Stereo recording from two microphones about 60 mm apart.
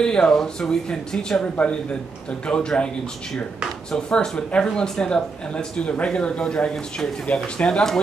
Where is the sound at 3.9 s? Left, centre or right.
Centre.